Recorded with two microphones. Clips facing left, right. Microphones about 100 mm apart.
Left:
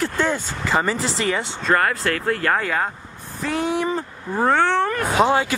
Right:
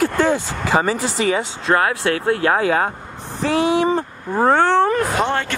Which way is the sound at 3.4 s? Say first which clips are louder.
Right 5 dB; 70° right (ahead or behind).